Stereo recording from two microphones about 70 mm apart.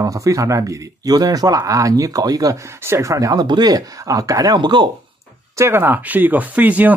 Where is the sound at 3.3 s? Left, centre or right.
Right.